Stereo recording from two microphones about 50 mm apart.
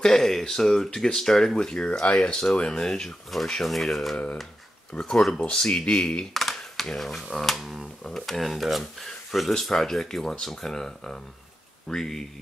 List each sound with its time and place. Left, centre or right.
0.0 s speech: centre
4.9 s speech: centre
6.3 s computer keyboard: centre
7.0 s speech: centre
8.0 s speech: centre